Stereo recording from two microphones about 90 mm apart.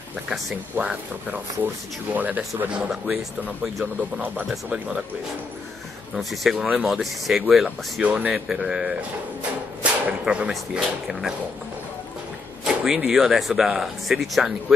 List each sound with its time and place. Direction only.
0.7 s speech: 15° right (ahead or behind)
3.8 s speech: 15° right (ahead or behind)
6.1 s speech: centre (ahead or behind)
7.6 s speech: 15° right (ahead or behind)
10.0 s speech: 10° right (ahead or behind)
12.6 s speech: 5° right (ahead or behind)